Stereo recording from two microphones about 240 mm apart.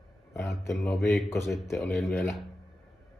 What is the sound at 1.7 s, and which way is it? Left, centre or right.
Speech, centre.